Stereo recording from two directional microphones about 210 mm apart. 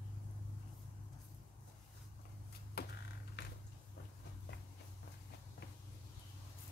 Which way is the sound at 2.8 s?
50° left (ahead or behind).